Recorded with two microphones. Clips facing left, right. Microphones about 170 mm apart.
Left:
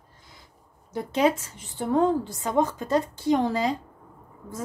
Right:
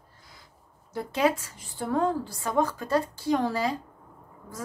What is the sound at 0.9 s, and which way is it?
A woman's voice, 20° left (ahead or behind).